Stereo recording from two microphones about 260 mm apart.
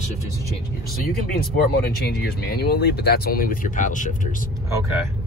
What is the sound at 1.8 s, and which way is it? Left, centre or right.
Speech, left.